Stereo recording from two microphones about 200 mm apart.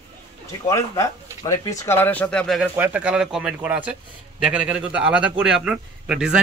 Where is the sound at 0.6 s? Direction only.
15° left (ahead or behind).